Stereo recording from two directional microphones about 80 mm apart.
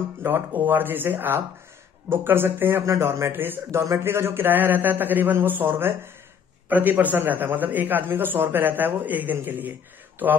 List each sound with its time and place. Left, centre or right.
0.2 s a man's voice: right